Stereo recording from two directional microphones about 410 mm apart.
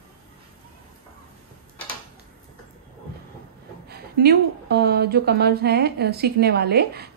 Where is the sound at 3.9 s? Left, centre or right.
Right.